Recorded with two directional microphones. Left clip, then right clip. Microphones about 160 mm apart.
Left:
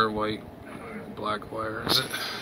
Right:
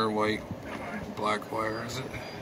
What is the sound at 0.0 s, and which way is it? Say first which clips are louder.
Speech: left 2 dB; centre (ahead or behind).